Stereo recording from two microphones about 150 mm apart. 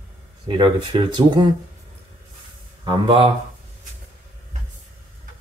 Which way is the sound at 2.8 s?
35° right (ahead or behind).